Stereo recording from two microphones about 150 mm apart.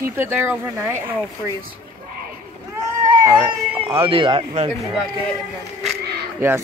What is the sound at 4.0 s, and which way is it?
Speech, 35° right (ahead or behind).